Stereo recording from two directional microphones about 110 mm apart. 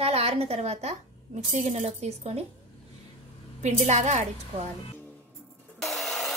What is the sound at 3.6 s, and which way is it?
Speech, 90° right.